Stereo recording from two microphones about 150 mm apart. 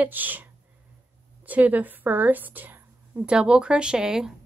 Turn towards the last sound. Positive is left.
turn(degrees=-5)  # may be behind; listen again after turning